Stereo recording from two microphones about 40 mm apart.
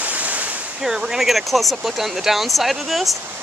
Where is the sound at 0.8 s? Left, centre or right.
Centre.